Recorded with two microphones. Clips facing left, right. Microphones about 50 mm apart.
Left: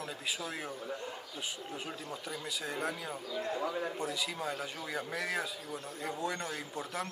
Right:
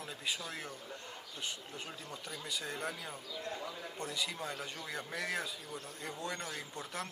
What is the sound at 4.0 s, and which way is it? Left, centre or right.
Speech, centre.